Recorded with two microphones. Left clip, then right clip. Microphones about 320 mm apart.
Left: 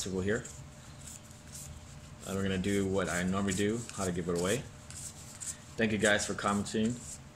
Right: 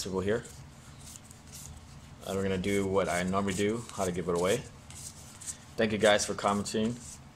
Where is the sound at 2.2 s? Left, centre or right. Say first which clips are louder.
Right 3 dB; centre.